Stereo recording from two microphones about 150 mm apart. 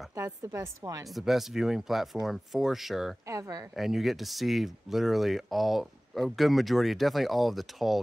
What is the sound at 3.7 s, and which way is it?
Speech, centre (ahead or behind).